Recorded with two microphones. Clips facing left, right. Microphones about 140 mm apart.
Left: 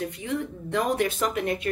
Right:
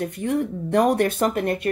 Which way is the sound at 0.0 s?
55° right (ahead or behind).